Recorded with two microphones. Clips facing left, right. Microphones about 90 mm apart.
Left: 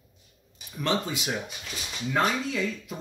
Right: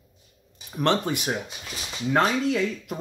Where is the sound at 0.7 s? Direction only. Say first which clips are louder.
Right 5 dB; 60° right (ahead or behind).